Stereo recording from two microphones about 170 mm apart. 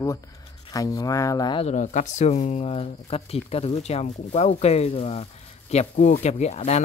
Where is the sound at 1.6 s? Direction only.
45° left (ahead or behind).